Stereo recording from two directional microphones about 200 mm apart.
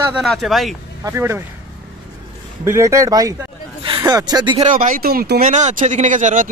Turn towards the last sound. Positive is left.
turn(degrees=-40)  # may be behind; listen again after turning